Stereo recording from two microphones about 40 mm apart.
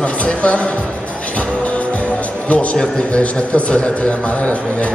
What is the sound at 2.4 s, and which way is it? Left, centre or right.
Speech, left.